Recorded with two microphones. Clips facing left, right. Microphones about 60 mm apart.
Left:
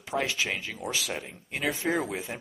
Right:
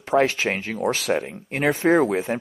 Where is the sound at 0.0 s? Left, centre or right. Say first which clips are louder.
Right 10 dB; right.